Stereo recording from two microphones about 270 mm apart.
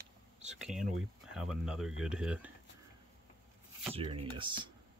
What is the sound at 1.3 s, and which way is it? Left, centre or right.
Speech, centre.